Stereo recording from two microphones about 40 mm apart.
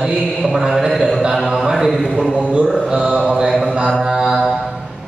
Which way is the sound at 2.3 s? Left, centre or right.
Right.